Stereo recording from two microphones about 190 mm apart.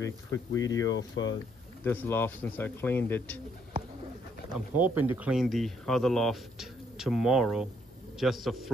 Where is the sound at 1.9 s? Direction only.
10° left (ahead or behind).